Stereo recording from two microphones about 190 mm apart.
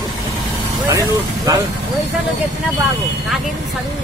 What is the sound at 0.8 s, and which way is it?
Speech, 20° right (ahead or behind).